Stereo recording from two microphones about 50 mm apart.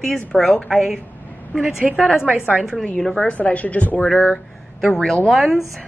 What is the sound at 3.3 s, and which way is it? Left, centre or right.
Speech, left.